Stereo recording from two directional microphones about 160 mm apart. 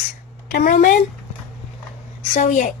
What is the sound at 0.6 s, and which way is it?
Speech, 60° left (ahead or behind).